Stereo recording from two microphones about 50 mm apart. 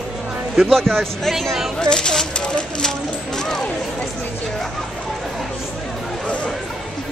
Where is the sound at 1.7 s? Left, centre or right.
Centre.